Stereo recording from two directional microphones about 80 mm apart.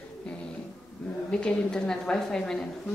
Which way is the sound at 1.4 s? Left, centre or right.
Centre.